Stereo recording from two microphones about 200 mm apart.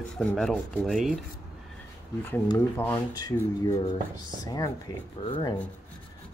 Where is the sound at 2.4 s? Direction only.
10° left (ahead or behind).